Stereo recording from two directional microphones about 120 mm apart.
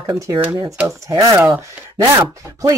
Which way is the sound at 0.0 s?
30° right (ahead or behind).